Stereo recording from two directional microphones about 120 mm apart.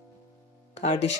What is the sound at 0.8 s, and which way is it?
Speech, 65° left (ahead or behind).